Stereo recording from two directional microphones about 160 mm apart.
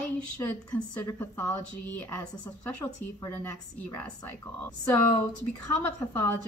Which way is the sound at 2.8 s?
15° left (ahead or behind).